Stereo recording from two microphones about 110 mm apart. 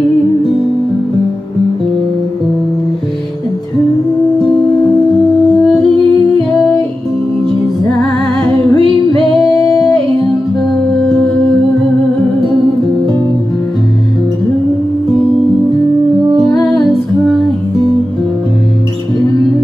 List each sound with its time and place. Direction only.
8.5 s singing: 55° right (ahead or behind)
12.4 s music: 50° right (ahead or behind)
16.4 s music: centre (ahead or behind)